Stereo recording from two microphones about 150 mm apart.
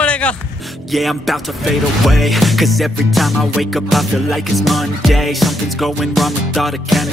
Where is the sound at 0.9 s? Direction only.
Centre (ahead or behind).